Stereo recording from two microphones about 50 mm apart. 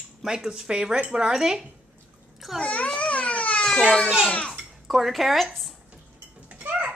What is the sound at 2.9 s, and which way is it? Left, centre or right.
Babbling, left.